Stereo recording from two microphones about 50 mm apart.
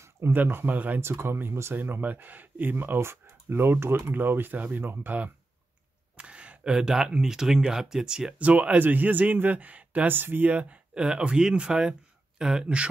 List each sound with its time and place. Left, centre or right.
0.3 s a man's voice: right
1.2 s speech: right
4.1 s a man's voice: right
4.8 s speech: right
6.1 s speech: right
8.3 s a man's voice: right
10.5 s speech: right